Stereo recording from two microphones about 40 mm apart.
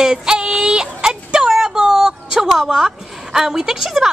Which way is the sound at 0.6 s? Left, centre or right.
Right.